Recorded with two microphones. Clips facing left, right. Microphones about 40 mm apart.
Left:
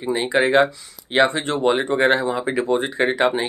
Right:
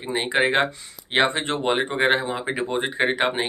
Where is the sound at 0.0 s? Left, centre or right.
Right.